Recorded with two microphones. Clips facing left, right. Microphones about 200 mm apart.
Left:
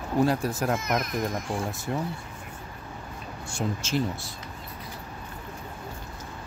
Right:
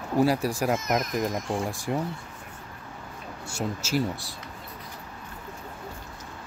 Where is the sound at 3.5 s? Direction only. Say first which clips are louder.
Even; 10° right (ahead or behind).